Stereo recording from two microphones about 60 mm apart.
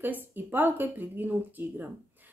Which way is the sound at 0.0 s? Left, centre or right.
Right.